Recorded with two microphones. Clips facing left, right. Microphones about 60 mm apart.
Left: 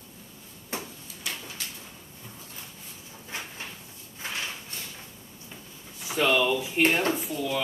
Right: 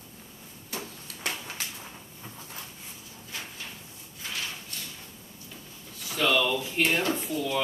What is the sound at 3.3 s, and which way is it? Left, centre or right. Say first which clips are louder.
Cupboard open or close: left 3 dB; left.